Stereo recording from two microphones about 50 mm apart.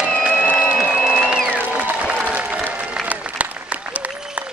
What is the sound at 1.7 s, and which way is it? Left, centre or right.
Applause, right.